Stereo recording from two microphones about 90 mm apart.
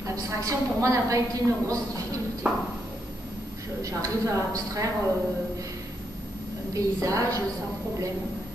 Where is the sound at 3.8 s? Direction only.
35° right (ahead or behind).